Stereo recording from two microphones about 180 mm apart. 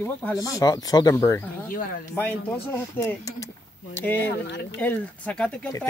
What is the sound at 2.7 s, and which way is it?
Speech, 15° left (ahead or behind).